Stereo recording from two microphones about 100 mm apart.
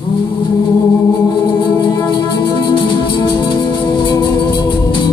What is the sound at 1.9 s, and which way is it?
Music, 40° left (ahead or behind).